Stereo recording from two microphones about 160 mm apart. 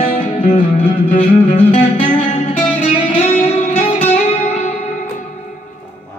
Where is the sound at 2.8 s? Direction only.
35° left (ahead or behind).